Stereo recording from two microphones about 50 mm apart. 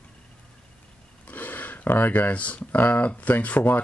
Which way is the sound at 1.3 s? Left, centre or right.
Left.